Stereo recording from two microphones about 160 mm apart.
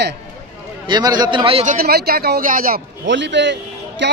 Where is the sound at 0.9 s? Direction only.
25° right (ahead or behind).